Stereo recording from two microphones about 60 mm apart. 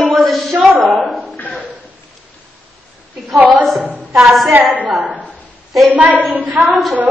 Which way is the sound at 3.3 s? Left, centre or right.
Centre.